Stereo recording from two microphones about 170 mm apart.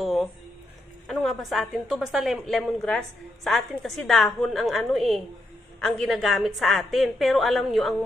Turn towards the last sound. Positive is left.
turn(degrees=0)  # may be behind; listen again after turning